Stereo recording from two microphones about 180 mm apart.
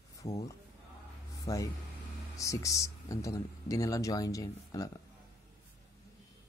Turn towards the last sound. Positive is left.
turn(degrees=20)  # may be behind; listen again after turning